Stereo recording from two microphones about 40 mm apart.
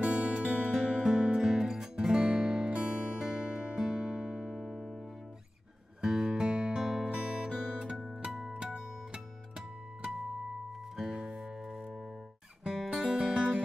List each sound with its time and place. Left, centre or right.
0.0 s music: right
0.7 s music: centre
5.9 s music: centre
7.1 s music: right
8.3 s music: centre
11.0 s music: centre
12.6 s music: centre
12.9 s music: right